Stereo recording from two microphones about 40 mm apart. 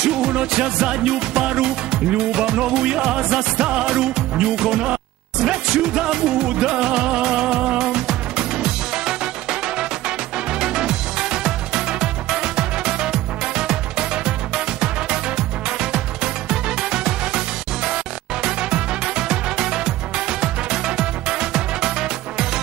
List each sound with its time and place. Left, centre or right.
0.0 s music: centre